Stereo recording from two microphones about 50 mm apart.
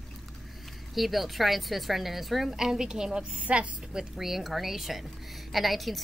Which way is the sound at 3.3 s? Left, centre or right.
Right.